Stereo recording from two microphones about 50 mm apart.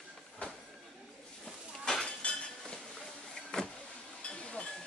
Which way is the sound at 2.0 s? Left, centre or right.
Centre.